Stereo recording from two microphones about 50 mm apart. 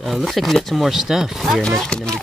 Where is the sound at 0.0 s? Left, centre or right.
Centre.